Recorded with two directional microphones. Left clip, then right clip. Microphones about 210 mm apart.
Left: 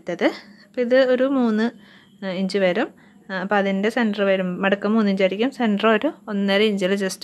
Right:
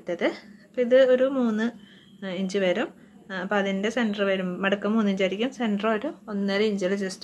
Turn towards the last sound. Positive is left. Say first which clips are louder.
# left 5 dB
turn(degrees=45)  # may be behind; listen again after turning